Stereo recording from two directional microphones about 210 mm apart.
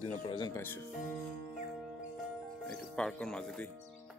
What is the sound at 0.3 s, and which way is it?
Speech, 15° left (ahead or behind).